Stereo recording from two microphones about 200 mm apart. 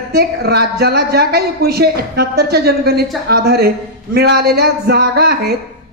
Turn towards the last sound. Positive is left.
turn(degrees=-50)  # may be behind; listen again after turning